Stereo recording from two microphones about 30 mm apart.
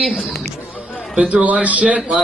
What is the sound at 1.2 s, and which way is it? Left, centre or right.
Speech, right.